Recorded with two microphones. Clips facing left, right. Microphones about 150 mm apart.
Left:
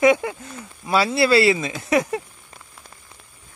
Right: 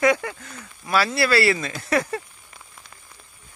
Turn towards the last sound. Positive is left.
turn(degrees=15)  # may be behind; listen again after turning